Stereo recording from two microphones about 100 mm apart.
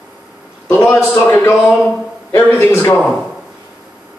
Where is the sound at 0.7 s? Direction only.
25° left (ahead or behind).